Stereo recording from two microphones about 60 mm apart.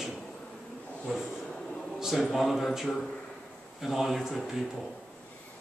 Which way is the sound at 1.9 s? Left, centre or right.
Centre.